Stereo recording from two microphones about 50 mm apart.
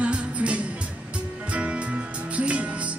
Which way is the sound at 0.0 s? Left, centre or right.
Right.